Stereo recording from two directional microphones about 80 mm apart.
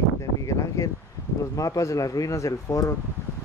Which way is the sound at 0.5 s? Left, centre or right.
Left.